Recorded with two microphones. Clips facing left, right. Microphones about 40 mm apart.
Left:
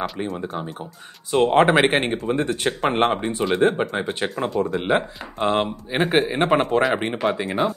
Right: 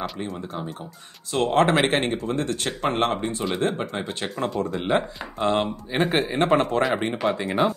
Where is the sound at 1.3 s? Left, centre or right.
Centre.